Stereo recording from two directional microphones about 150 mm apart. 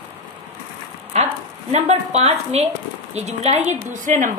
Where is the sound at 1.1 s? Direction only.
45° right (ahead or behind).